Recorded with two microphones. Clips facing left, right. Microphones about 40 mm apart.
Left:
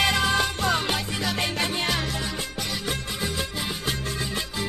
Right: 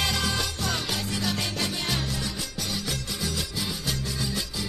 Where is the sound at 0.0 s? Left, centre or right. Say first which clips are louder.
Left 5 dB; left.